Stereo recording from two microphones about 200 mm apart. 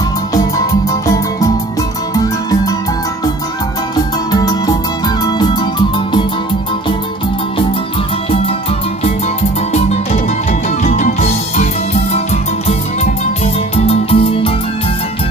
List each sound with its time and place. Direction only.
2.1 s music: 15° left (ahead or behind)
3.9 s music: 20° left (ahead or behind)
9.7 s music: 30° left (ahead or behind)
13.7 s music: 30° left (ahead or behind)